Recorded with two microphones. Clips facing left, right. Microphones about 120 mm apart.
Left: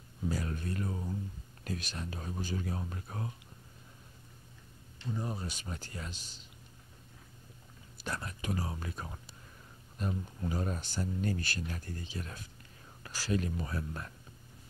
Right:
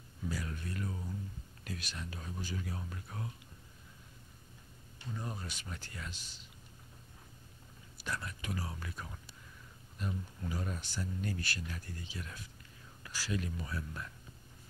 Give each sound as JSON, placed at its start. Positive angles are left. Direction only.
{"t": 0.3, "sound": "speech", "side_deg": 40}
{"t": 5.1, "sound": "speech", "side_deg": 20}
{"t": 5.5, "sound": "speech", "side_deg": 35}
{"t": 8.0, "sound": "speech", "side_deg": 40}